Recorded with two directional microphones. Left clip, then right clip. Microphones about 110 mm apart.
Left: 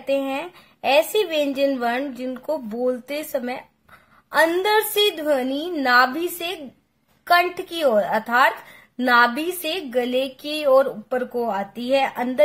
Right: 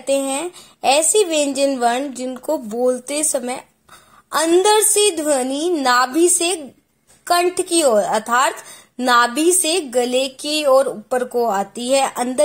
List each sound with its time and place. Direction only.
0.0 s a woman's voice: 35° right (ahead or behind)
4.6 s a woman's voice: 25° right (ahead or behind)